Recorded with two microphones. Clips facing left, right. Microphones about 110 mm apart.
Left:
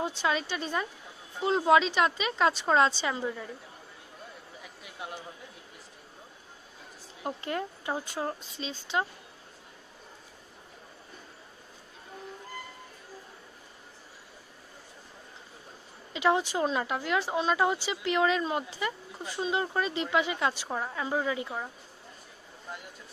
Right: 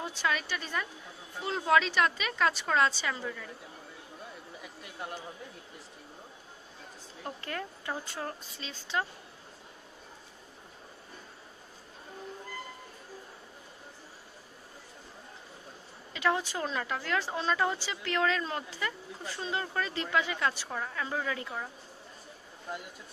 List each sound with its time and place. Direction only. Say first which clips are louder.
0.0 s speech: left 3 dB; 25° left (ahead or behind)
7.2 s speech: left 5 dB; 20° left (ahead or behind)
16.1 s speech: left 4 dB; 20° left (ahead or behind)